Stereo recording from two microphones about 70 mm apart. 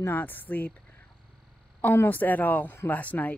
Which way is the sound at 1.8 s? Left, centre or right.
Left.